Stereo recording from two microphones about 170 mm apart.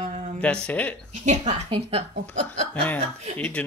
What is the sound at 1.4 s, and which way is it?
Speech, 30° right (ahead or behind).